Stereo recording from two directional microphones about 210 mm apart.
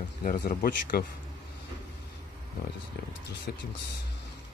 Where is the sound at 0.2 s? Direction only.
45° left (ahead or behind).